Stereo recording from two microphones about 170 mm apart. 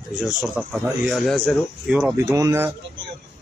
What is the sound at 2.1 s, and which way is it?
Speech, 20° right (ahead or behind).